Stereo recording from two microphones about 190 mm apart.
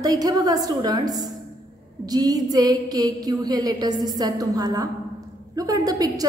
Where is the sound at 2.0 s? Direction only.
20° right (ahead or behind).